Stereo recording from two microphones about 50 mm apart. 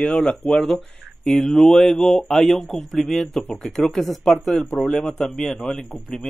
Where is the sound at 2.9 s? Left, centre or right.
Centre.